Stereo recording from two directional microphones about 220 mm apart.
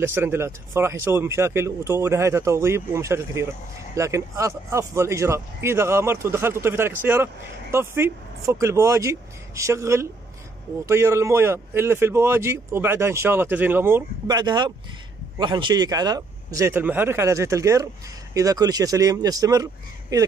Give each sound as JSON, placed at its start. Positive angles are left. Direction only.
{"t": 0.0, "sound": "speech", "side_deg": -10}